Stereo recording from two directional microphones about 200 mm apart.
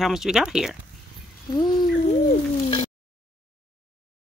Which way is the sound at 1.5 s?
20° left (ahead or behind).